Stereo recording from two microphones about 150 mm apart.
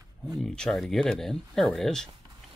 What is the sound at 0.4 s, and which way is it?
Speech, 5° left (ahead or behind).